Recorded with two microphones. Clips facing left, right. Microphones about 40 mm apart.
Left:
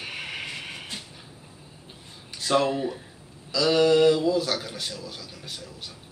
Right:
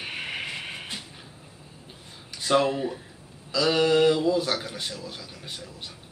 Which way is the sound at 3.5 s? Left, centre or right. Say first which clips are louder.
Left 2 dB; centre.